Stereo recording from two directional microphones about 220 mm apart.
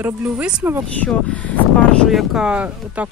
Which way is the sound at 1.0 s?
5° left (ahead or behind).